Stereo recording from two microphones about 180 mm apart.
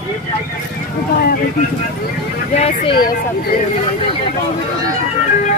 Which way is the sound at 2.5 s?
35° left (ahead or behind).